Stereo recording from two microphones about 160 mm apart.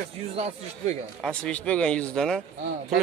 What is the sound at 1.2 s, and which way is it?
Speech, 5° left (ahead or behind).